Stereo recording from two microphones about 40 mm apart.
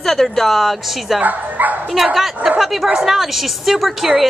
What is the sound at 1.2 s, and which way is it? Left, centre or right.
Speech, right.